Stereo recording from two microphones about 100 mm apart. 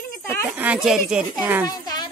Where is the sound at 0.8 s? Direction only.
5° right (ahead or behind).